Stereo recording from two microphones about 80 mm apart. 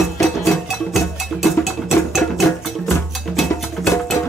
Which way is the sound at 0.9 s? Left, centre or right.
Centre.